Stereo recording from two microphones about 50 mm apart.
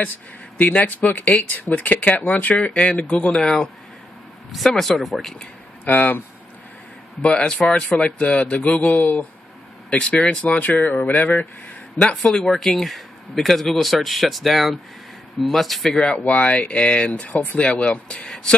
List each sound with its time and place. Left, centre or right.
0.6 s speech: left; by 3.7 s centre
4.6 s speech: centre
5.9 s a sound: left
7.2 s speech: centre; by 9.2 s left
9.8 s speech: left
10.6 s a sound: left
12.0 s speech: centre
16.0 s speech: left